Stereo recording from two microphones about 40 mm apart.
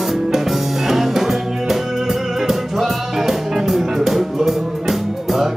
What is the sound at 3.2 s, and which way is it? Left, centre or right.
Music, centre.